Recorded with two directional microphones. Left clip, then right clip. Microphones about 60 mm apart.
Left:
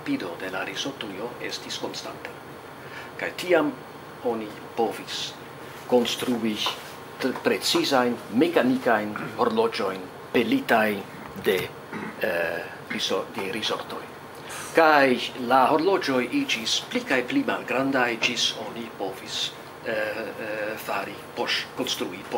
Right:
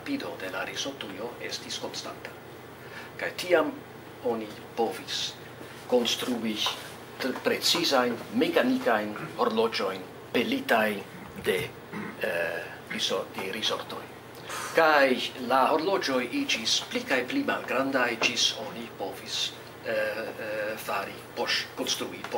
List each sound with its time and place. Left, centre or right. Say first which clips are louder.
0.0 s speech: left 4 dB; centre
3.2 s speech: left 2 dB; centre
4.2 s speech: left 2 dB; centre
4.7 s speech: left 2 dB; centre